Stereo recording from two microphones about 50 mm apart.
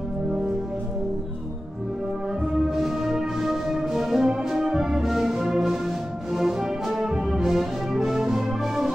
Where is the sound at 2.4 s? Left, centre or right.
Centre.